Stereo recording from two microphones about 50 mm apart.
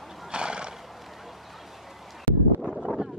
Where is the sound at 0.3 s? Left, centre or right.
Centre.